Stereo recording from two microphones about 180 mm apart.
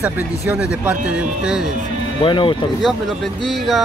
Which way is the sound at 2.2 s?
25° left (ahead or behind).